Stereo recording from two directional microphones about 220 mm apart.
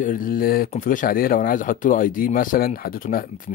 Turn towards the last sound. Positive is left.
turn(degrees=40)  # may be behind; listen again after turning